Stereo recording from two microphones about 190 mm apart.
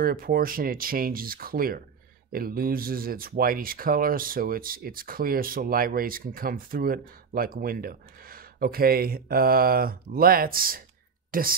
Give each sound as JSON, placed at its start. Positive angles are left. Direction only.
{"t": 0.0, "sound": "speech", "side_deg": -50}